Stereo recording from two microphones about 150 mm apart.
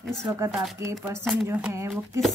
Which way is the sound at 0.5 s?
Centre (ahead or behind).